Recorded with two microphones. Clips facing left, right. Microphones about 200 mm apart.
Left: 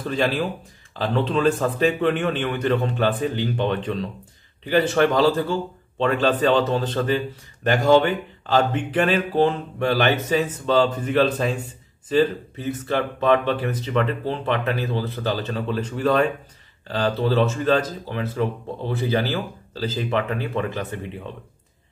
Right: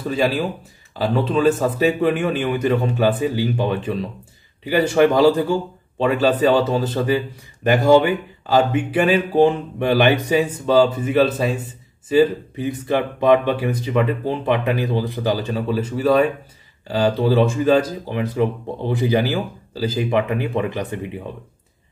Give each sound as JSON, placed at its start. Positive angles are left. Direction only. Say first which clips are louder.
{"t": 0.0, "sound": "speech", "louder": "right 3 dB", "side_deg": -5}